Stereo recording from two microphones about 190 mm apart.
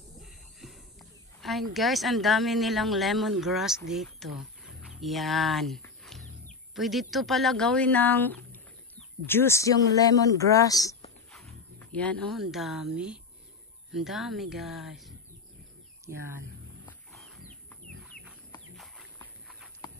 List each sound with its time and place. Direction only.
0.2 s a sound: centre (ahead or behind)
1.4 s speech: centre (ahead or behind); by 11.0 s 20° left (ahead or behind)
11.3 s speech: 5° left (ahead or behind)
16.8 s wild animals: centre (ahead or behind)
18.1 s chicken: 50° left (ahead or behind)
18.8 s horse: centre (ahead or behind)